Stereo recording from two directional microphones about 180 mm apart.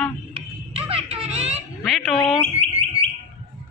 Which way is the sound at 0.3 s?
30° right (ahead or behind).